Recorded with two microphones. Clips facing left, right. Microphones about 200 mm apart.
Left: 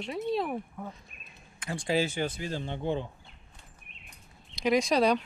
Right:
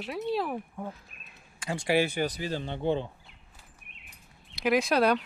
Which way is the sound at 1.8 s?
65° right (ahead or behind).